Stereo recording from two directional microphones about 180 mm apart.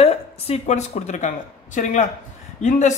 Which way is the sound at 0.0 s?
35° left (ahead or behind).